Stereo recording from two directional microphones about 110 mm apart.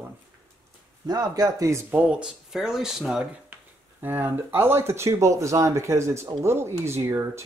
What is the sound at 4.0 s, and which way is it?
Speech, 20° right (ahead or behind).